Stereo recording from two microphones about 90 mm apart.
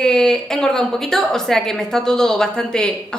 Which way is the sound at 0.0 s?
5° left (ahead or behind).